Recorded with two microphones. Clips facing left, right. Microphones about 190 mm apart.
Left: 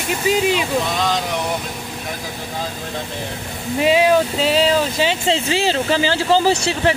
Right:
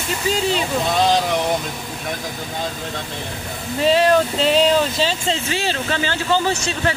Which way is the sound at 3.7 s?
10° left (ahead or behind).